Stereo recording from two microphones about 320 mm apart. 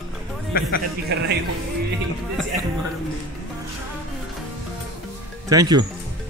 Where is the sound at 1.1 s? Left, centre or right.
Right.